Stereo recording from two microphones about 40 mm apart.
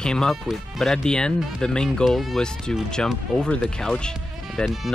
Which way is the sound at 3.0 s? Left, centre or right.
Centre.